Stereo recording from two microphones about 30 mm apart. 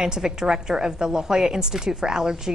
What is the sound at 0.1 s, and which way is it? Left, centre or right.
A woman's voice, centre.